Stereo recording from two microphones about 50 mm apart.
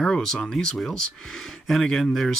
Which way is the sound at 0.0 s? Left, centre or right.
Centre.